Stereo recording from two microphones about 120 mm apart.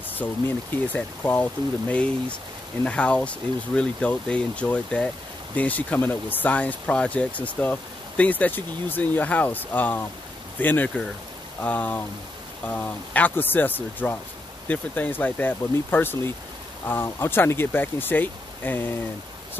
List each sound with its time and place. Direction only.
0.1 s speech: 15° left (ahead or behind)